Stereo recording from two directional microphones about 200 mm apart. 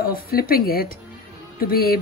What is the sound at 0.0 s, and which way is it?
Speech, 50° left (ahead or behind).